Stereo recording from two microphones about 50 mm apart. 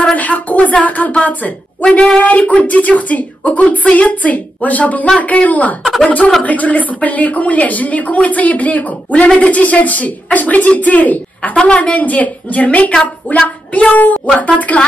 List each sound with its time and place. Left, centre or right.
0.1 s a woman's voice: left
13.3 s speech: left